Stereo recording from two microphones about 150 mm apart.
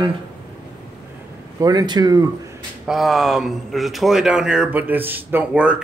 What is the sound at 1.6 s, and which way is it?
Speech, 25° right (ahead or behind).